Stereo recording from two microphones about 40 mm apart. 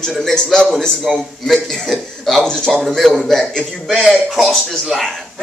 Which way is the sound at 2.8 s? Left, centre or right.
Centre.